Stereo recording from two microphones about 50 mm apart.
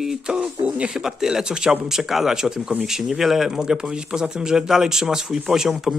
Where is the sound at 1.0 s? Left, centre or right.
Centre.